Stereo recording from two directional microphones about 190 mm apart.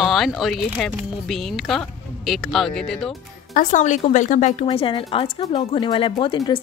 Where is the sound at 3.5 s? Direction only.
40° left (ahead or behind).